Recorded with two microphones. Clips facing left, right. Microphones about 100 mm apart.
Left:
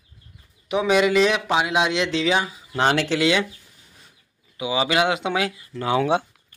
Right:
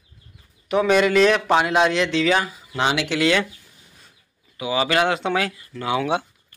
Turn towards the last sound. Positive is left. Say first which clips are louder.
# left 2 dB
turn(degrees=30)  # may be behind; listen again after turning